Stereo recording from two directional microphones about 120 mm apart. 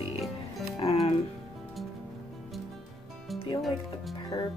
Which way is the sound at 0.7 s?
55° left (ahead or behind).